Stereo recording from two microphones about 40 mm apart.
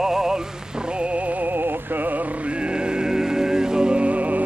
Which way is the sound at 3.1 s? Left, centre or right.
Centre.